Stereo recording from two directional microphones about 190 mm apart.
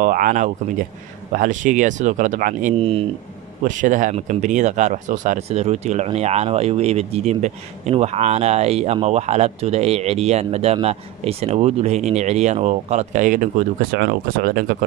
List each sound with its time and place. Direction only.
0.0 s speech: 45° right (ahead or behind)
2.8 s speech: 30° right (ahead or behind)
3.6 s speech: 40° right (ahead or behind)